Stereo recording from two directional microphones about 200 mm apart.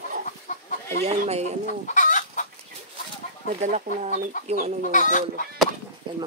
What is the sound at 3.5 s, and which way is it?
Speech, 35° right (ahead or behind).